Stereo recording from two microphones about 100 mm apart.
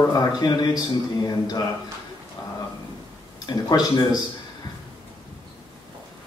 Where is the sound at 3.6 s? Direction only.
40° left (ahead or behind).